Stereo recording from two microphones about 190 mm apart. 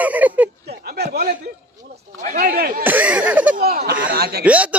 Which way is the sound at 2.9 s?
10° right (ahead or behind).